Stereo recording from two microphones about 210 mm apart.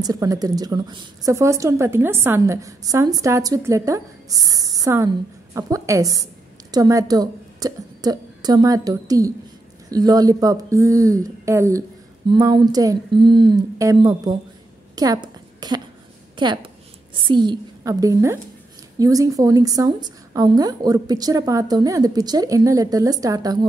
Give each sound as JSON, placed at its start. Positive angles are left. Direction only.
{"t": 0.0, "sound": "a woman's voice", "side_deg": -15}
{"t": 15.0, "sound": "a sound", "side_deg": -20}
{"t": 16.4, "sound": "a woman's voice", "side_deg": -20}